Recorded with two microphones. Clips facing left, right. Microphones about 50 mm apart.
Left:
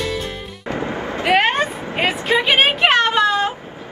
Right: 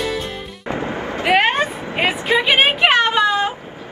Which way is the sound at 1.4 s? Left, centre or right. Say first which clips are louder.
Right 1 dB; centre.